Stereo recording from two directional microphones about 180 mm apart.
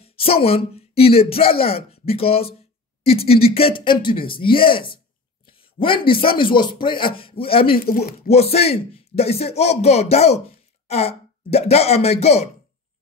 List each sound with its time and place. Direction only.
0.0 s a sound: 30° left (ahead or behind)
0.7 s speech: 35° left (ahead or behind)
7.7 s speech: 55° left (ahead or behind)
8.3 s speech: 35° left (ahead or behind)